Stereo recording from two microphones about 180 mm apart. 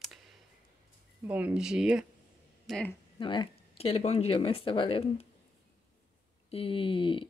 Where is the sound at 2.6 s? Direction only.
5° left (ahead or behind).